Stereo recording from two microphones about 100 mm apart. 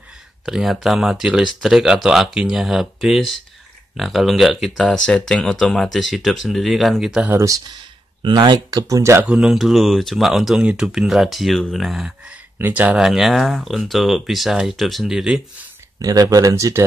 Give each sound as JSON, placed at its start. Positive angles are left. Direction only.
{"t": 0.5, "sound": "speech", "side_deg": -5}
{"t": 7.2, "sound": "speech", "side_deg": -30}
{"t": 8.2, "sound": "speech", "side_deg": -50}
{"t": 9.2, "sound": "speech", "side_deg": -10}
{"t": 12.5, "sound": "speech", "side_deg": -15}
{"t": 13.0, "sound": "speech", "side_deg": 0}
{"t": 16.0, "sound": "speech", "side_deg": -35}